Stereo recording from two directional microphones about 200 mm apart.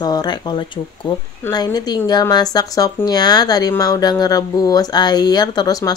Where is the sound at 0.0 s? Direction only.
20° left (ahead or behind).